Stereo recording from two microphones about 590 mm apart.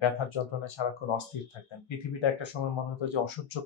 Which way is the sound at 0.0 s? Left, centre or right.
Left.